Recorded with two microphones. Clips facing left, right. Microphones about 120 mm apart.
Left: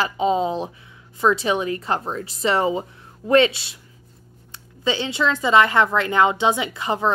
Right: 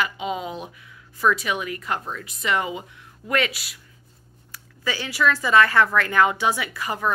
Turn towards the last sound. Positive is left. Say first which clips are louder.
# left 4 dB
turn(degrees=25)  # may be behind; listen again after turning